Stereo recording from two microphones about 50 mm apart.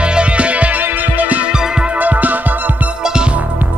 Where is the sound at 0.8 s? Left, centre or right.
Right.